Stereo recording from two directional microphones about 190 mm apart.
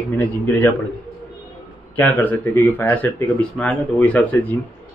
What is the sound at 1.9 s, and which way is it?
Speech, 10° left (ahead or behind).